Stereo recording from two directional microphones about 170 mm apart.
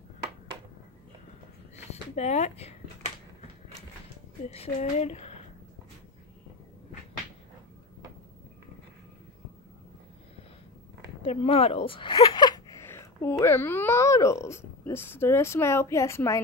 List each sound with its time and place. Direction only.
1.9 s speech: 40° left (ahead or behind)
4.5 s speech: 40° left (ahead or behind)
11.2 s speech: 35° left (ahead or behind); by 16.3 s 15° left (ahead or behind)